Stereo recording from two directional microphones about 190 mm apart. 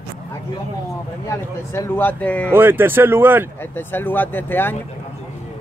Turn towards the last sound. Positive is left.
turn(degrees=10)  # may be behind; listen again after turning